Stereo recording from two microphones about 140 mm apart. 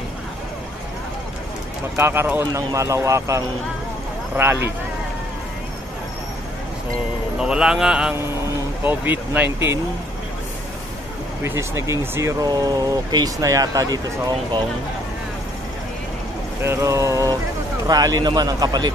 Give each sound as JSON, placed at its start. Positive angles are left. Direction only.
{"t": 2.0, "sound": "speech", "side_deg": -15}
{"t": 7.3, "sound": "a man's voice", "side_deg": -5}
{"t": 11.4, "sound": "speech", "side_deg": -20}
{"t": 16.6, "sound": "speech", "side_deg": -20}